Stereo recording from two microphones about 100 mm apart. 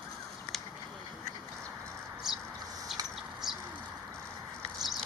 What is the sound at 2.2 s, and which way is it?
Bird, 5° right (ahead or behind).